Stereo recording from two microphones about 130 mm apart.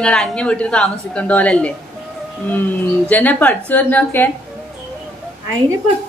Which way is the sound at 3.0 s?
10° left (ahead or behind).